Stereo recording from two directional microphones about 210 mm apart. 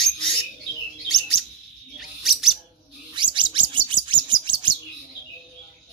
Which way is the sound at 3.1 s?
20° right (ahead or behind).